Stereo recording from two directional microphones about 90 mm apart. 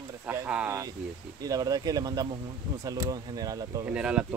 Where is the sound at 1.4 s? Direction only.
45° right (ahead or behind).